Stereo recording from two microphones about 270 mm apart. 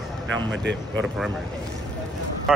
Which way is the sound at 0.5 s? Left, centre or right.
Right.